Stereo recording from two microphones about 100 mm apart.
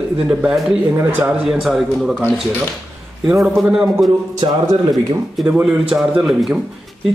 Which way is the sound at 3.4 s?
5° right (ahead or behind).